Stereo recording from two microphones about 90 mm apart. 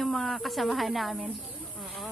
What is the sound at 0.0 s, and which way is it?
A woman's voice, centre (ahead or behind).